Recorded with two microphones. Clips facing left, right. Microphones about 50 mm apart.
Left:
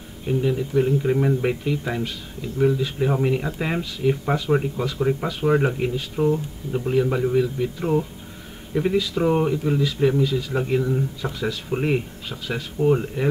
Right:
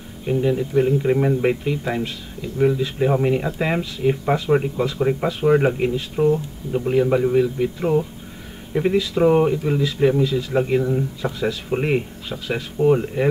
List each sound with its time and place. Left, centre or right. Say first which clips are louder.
0.3 s speech: right 2 dB; centre
6.7 s speech: right 3 dB; centre
8.9 s speech: right 5 dB; centre
12.7 s speech: right 3 dB; centre